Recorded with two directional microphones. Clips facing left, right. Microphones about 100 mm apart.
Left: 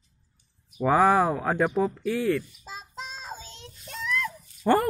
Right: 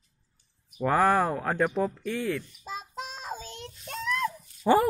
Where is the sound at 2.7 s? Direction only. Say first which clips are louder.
Right 2 dB; 50° right (ahead or behind).